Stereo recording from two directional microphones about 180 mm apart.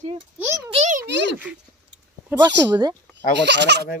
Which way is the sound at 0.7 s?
40° right (ahead or behind).